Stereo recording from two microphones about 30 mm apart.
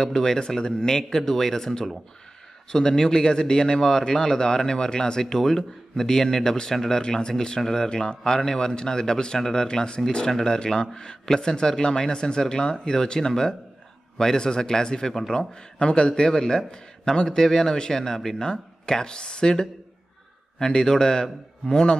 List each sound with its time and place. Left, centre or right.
0.0 s speech: centre
5.2 s speech: centre
7.0 s speech: left
11.2 s speech: centre